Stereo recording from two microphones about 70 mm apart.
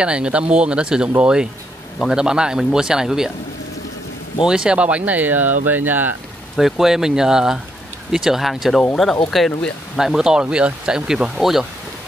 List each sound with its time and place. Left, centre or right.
0.0 s speech: centre
4.5 s speech: centre
6.5 s speech: centre
11.3 s speech: centre